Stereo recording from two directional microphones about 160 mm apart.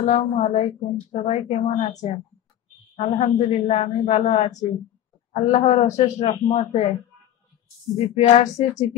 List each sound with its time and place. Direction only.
0.0 s a woman's voice: 45° left (ahead or behind)
7.9 s a woman's voice: 40° left (ahead or behind)